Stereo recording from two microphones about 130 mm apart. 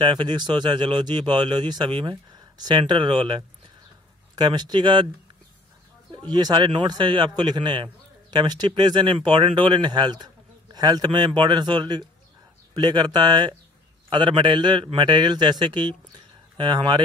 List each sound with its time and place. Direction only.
0.0 s a man's voice: 35° right (ahead or behind)
6.1 s a man's voice: 30° right (ahead or behind)